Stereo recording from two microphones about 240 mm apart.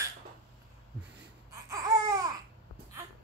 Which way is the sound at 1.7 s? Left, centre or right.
Centre.